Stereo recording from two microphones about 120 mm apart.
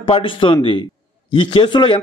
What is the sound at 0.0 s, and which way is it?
A man's voice, 45° left (ahead or behind).